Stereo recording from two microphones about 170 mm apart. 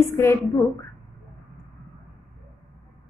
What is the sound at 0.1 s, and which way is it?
Speech, 15° left (ahead or behind).